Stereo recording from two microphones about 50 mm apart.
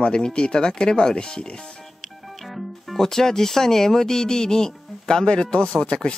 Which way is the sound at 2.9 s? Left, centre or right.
Centre.